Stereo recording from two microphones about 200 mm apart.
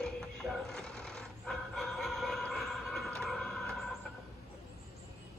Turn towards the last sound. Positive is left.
turn(degrees=5)  # may be behind; listen again after turning